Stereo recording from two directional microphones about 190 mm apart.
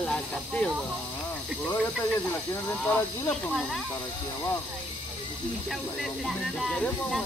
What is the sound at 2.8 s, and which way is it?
Speech, 5° left (ahead or behind).